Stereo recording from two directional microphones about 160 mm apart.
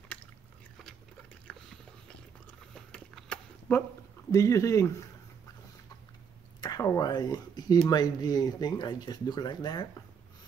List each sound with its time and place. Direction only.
1.5 s a sound: 5° left (ahead or behind)
4.3 s speech: 20° left (ahead or behind)
6.6 s speech: 25° left (ahead or behind)